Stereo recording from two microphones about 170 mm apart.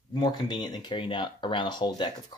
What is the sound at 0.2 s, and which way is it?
Speech, 25° left (ahead or behind).